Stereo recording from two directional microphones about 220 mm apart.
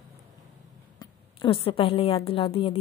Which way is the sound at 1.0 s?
25° left (ahead or behind).